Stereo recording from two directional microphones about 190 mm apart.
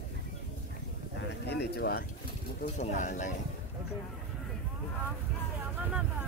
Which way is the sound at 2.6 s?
35° left (ahead or behind).